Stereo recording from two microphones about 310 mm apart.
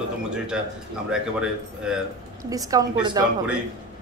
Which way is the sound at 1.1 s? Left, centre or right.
Centre.